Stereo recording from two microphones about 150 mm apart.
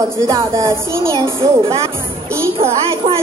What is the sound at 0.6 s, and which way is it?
Speech, 20° right (ahead or behind).